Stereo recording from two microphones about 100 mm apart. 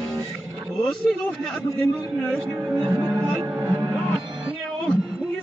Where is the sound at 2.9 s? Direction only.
30° right (ahead or behind).